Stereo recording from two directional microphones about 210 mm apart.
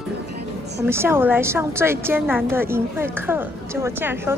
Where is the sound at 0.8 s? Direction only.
10° right (ahead or behind).